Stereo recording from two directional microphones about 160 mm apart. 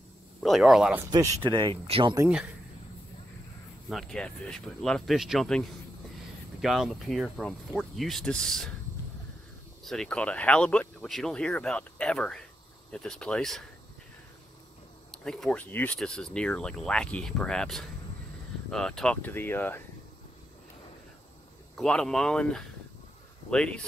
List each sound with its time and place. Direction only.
0.4 s speech: centre (ahead or behind)
1.4 s speech: 30° right (ahead or behind)
3.9 s speech: 5° left (ahead or behind)
9.8 s speech: 5° left (ahead or behind)
15.0 s speech: 5° left (ahead or behind)
21.7 s speech: 5° left (ahead or behind)